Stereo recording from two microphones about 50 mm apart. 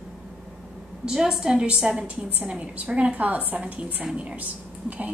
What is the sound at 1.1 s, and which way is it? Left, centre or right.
A woman's voice, centre.